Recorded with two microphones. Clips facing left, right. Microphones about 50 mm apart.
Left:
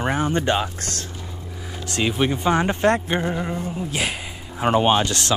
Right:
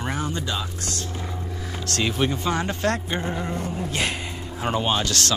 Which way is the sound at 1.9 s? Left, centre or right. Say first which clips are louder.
Left 2 dB; centre.